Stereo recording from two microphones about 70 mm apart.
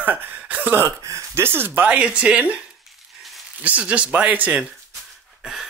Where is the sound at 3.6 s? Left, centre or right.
Right.